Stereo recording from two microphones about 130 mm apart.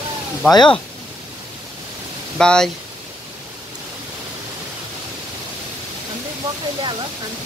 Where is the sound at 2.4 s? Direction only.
5° left (ahead or behind).